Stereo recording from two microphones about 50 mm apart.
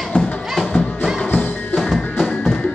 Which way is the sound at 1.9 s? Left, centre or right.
Centre.